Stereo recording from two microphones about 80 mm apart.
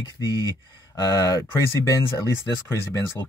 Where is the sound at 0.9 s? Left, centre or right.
Left.